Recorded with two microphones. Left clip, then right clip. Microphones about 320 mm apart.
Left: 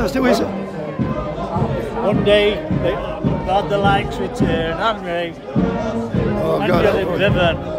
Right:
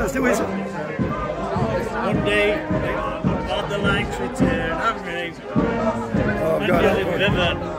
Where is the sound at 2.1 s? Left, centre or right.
Centre.